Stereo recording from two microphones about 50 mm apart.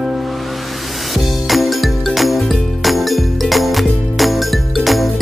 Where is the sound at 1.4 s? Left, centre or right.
Centre.